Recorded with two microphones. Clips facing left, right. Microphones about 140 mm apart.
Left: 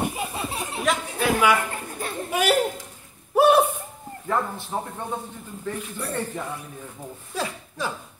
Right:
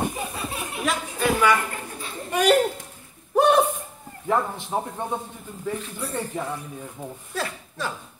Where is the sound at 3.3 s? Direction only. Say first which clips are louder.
Left 1 dB; 5° left (ahead or behind).